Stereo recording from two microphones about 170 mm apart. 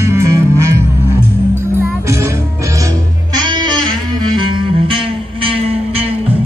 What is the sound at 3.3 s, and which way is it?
Music, 25° right (ahead or behind).